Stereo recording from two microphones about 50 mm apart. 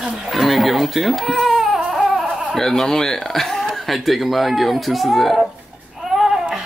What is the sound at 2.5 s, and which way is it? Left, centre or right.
Speech, centre.